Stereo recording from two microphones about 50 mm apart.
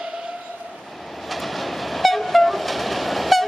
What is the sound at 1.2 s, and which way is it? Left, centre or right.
Train, centre.